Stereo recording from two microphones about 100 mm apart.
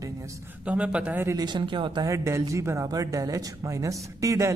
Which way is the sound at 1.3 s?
45° right (ahead or behind).